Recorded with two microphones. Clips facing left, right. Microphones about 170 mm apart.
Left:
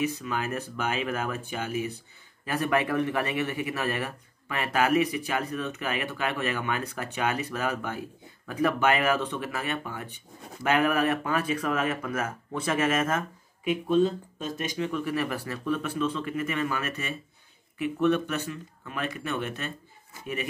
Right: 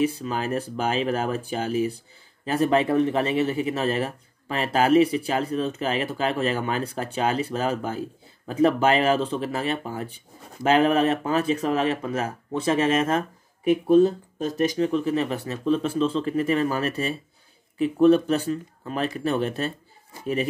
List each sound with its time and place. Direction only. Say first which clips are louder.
0.0 s speech: right 5 dB; 30° right (ahead or behind)
13.7 s speech: right 6 dB; 40° right (ahead or behind)